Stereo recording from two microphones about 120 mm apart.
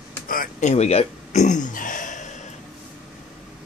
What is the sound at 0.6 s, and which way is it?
Speech, 70° left (ahead or behind).